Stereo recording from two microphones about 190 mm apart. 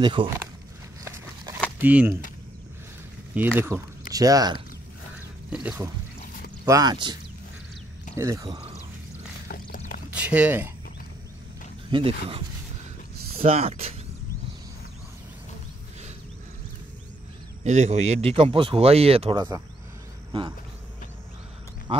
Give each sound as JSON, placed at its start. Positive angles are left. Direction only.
{"t": 0.0, "sound": "speech", "side_deg": -25}
{"t": 1.0, "sound": "a sound", "side_deg": -15}
{"t": 1.8, "sound": "speech", "side_deg": -10}
{"t": 3.3, "sound": "speech", "side_deg": -10}
{"t": 5.5, "sound": "speech", "side_deg": -10}
{"t": 6.6, "sound": "speech", "side_deg": -20}
{"t": 8.2, "sound": "speech", "side_deg": -15}
{"t": 10.1, "sound": "speech", "side_deg": -5}
{"t": 11.9, "sound": "speech", "side_deg": -30}
{"t": 17.6, "sound": "speech", "side_deg": -35}